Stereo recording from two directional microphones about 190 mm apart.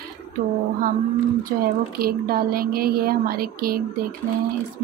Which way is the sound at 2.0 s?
50° right (ahead or behind).